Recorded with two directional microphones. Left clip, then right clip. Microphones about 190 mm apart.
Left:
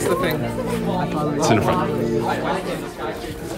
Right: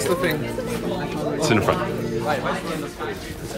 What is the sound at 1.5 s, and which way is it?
Speech, 5° left (ahead or behind).